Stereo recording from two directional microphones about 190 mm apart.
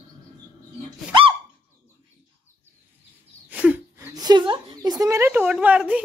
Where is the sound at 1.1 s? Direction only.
25° right (ahead or behind).